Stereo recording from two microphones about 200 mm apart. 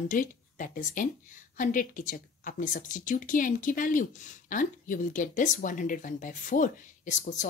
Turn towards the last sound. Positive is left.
turn(degrees=40)  # may be behind; listen again after turning